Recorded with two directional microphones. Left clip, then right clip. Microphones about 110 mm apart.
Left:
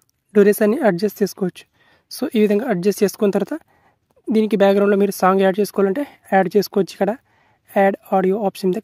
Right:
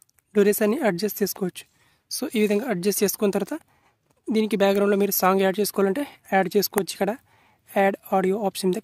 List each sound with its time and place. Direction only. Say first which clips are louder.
0.3 s speech: left 6 dB; 35° left (ahead or behind)
6.0 s speech: left 5 dB; 35° left (ahead or behind)